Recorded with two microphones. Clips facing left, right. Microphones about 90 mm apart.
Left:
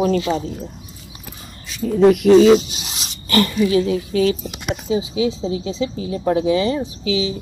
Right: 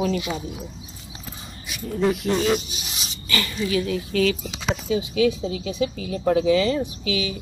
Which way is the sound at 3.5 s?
25° left (ahead or behind).